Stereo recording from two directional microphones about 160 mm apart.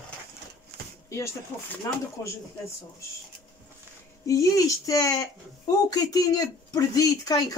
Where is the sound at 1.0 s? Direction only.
15° left (ahead or behind).